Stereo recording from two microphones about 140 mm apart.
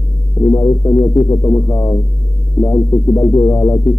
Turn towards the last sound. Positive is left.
turn(degrees=25)  # may be behind; listen again after turning